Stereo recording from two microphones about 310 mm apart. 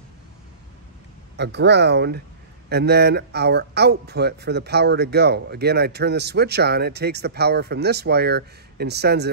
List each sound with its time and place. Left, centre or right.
1.3 s speech: right